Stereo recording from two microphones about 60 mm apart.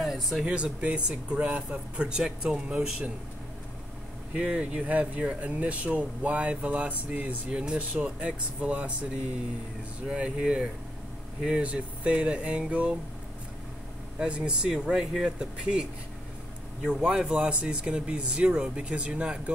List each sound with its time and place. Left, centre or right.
0.0 s a sound: centre
0.5 s speech: centre
4.3 s speech: centre
14.2 s speech: centre
16.9 s speech: right